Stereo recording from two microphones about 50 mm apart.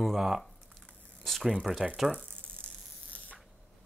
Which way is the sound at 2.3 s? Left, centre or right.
Left.